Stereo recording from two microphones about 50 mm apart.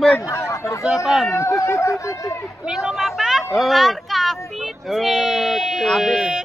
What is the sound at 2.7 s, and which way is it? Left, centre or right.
Speech, centre.